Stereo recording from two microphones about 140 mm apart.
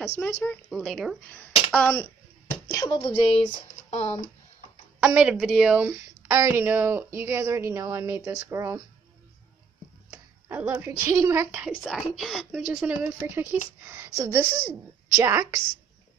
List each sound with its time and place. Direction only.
0.2 s speech: 15° left (ahead or behind)
0.7 s a woman's voice: centre (ahead or behind)
1.3 s speech: 10° left (ahead or behind)
2.7 s speech: 30° left (ahead or behind)
4.0 s speech: 50° left (ahead or behind)
5.0 s a woman's voice: 10° right (ahead or behind)
5.9 s a woman's voice: 15° right (ahead or behind)
10.1 s speech: 15° right (ahead or behind)
11.5 s a woman's voice: 10° right (ahead or behind)